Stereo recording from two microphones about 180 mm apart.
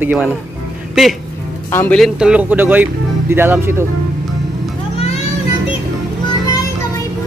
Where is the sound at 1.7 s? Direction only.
10° left (ahead or behind).